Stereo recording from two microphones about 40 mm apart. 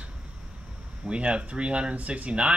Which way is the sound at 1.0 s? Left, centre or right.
Right.